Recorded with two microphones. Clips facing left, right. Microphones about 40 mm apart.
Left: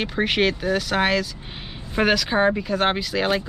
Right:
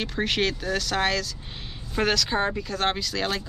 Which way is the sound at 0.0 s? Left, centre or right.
Centre.